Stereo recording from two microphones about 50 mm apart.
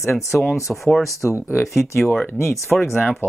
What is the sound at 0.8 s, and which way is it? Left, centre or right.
Speech, centre.